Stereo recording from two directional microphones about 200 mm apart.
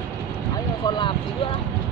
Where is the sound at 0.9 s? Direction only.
25° left (ahead or behind).